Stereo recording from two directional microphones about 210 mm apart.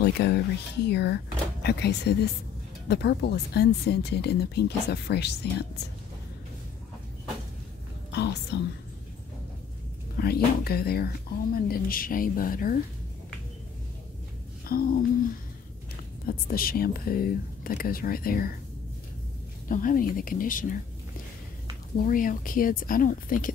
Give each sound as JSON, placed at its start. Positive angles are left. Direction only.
{"t": 0.0, "sound": "speech", "side_deg": 50}
{"t": 8.1, "sound": "speech", "side_deg": 50}
{"t": 10.1, "sound": "speech", "side_deg": 45}
{"t": 14.7, "sound": "speech", "side_deg": 45}
{"t": 16.3, "sound": "speech", "side_deg": 45}
{"t": 19.7, "sound": "a woman's voice", "side_deg": 40}
{"t": 21.9, "sound": "a woman's voice", "side_deg": 40}